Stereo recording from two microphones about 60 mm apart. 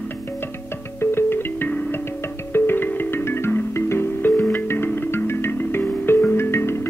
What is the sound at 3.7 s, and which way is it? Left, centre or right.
Music, left.